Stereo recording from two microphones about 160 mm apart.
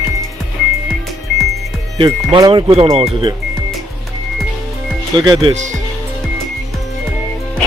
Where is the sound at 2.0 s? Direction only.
25° right (ahead or behind).